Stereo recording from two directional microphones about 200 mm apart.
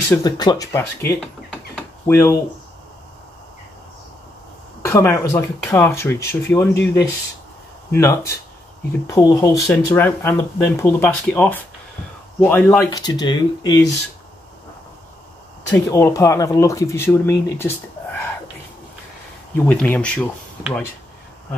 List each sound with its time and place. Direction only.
0.1 s speech: 20° left (ahead or behind)
4.8 s speech: 10° left (ahead or behind)
15.7 s speech: 15° left (ahead or behind)
19.6 s speech: 10° left (ahead or behind)